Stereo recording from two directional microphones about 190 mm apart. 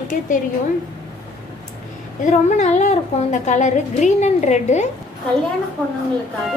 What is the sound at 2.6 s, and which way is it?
A woman's voice, 35° left (ahead or behind).